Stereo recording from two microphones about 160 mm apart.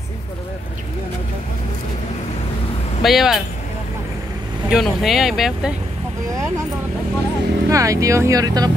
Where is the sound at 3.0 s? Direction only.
Centre (ahead or behind).